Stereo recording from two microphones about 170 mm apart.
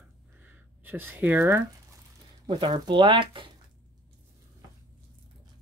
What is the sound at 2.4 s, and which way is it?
Speech, 30° right (ahead or behind).